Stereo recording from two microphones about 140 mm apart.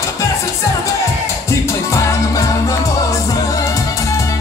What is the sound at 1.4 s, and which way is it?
Music, 20° left (ahead or behind).